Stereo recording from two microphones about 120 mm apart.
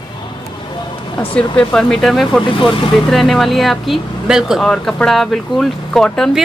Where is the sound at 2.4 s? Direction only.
45° left (ahead or behind).